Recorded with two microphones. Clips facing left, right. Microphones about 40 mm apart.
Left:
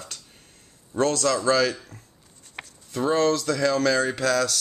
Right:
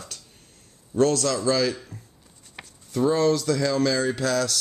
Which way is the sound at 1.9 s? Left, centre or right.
Right.